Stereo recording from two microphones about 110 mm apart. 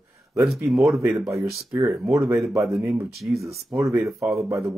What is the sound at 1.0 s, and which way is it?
Speech, 30° right (ahead or behind).